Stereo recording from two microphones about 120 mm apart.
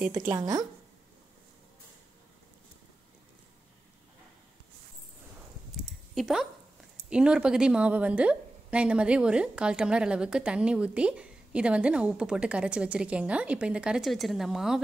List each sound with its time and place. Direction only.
0.1 s speech: 25° right (ahead or behind)
5.9 s a sound: centre (ahead or behind)
7.1 s a woman's voice: 10° right (ahead or behind)